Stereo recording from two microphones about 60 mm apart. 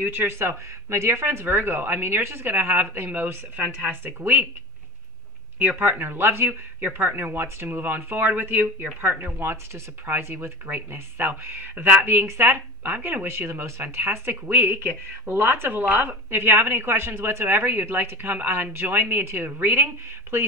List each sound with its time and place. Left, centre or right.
0.0 s speech: right
5.6 s speech: right